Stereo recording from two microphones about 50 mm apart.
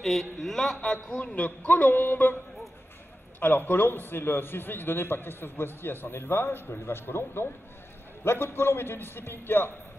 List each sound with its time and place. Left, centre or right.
0.0 s speech: centre
1.1 s a woman's voice: left
3.3 s a man's voice: left